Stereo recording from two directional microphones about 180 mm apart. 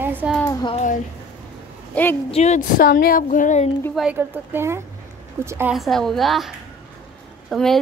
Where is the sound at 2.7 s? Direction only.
55° left (ahead or behind).